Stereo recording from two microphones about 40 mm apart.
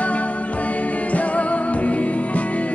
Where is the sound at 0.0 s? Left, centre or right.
Left.